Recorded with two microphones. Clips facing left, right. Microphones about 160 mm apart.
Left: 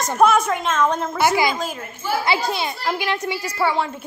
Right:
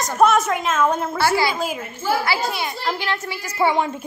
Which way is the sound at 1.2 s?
15° left (ahead or behind).